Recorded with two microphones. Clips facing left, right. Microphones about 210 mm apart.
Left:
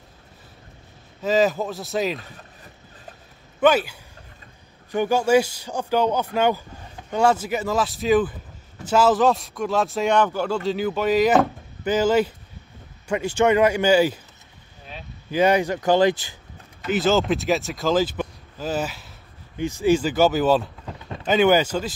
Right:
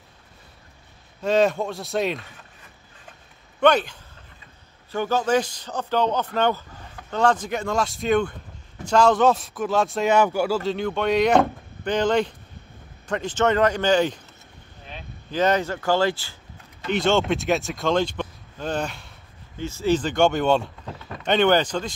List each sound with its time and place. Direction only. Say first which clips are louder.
1.2 s speech: even; centre (ahead or behind)
2.2 s a sound: left 4 dB; 35° left (ahead or behind)
3.6 s a man's voice: even; 5° left (ahead or behind)
16.8 s speech: left 1 dB; 5° left (ahead or behind)
19.6 s a man's voice: left 3 dB; 15° left (ahead or behind)